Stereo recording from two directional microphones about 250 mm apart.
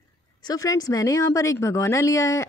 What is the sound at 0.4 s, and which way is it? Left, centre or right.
Speech, centre.